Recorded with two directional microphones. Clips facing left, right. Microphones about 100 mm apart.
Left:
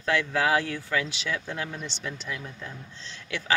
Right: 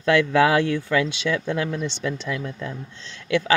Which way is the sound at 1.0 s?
65° right (ahead or behind).